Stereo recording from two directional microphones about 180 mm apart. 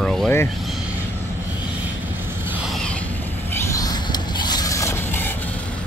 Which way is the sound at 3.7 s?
20° left (ahead or behind).